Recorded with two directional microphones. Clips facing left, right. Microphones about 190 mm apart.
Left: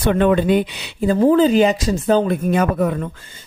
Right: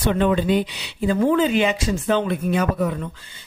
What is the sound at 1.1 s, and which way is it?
Speech, 35° left (ahead or behind).